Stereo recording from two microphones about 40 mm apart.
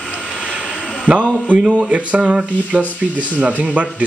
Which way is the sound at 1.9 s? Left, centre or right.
Right.